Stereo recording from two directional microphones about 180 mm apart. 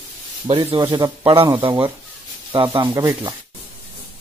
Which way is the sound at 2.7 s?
25° right (ahead or behind).